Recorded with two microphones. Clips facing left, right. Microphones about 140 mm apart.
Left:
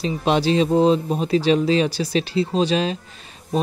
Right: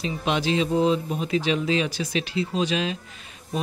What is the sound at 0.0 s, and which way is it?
Speech, 35° left (ahead or behind).